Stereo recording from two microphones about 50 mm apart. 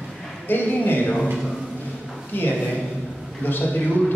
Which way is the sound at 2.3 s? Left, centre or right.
Left.